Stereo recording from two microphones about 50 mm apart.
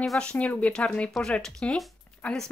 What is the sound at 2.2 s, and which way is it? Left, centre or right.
Speech, left.